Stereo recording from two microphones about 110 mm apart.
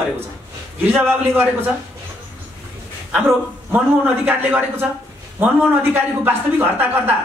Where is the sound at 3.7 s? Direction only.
15° right (ahead or behind).